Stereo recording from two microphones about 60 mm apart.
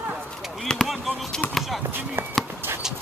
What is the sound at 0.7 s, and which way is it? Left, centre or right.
Speech, centre.